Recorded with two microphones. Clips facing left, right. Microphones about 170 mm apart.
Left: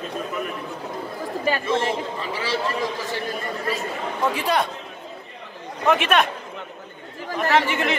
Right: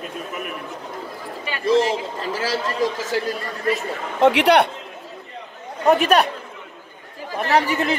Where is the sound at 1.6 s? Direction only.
40° right (ahead or behind).